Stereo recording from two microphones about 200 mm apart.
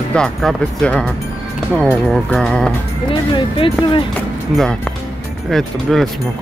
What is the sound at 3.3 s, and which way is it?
Speech, 25° left (ahead or behind).